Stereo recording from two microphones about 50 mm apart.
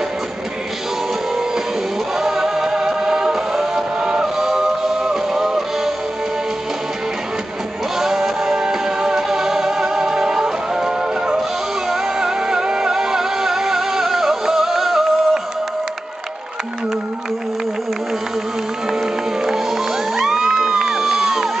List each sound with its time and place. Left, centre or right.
2.1 s music: centre
8.0 s music: centre
20.2 s music: centre